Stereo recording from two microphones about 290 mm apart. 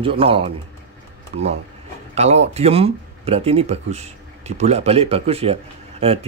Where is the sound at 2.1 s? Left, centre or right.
Right.